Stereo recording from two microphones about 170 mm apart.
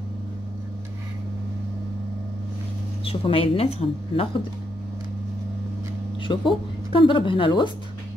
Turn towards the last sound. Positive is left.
turn(degrees=30)  # may be behind; listen again after turning